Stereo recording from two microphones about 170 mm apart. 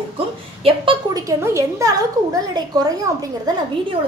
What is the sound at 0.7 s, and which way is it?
A woman's voice, 25° right (ahead or behind).